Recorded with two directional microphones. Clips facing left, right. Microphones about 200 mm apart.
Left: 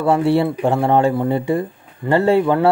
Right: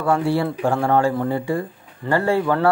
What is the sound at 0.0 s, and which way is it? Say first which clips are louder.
A man's voice: left 4 dB; 25° left (ahead or behind).